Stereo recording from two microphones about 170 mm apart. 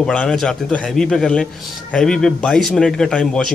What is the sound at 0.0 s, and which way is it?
A man's voice, 5° left (ahead or behind).